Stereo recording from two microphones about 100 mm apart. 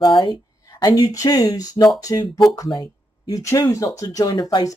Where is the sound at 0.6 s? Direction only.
40° left (ahead or behind).